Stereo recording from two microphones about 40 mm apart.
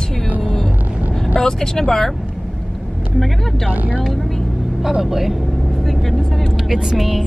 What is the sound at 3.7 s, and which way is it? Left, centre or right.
Speech, right.